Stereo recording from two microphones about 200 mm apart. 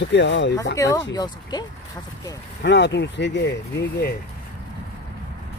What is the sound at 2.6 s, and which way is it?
Speech, 60° left (ahead or behind).